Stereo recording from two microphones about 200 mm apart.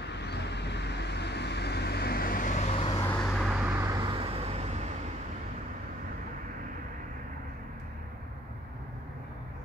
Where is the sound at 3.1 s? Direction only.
5° left (ahead or behind).